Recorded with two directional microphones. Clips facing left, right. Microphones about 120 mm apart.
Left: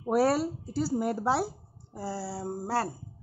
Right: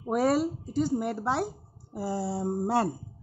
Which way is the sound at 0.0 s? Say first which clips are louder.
Even; 5° left (ahead or behind).